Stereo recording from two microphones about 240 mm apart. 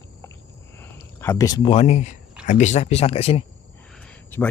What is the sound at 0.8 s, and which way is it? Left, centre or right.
Speech, centre.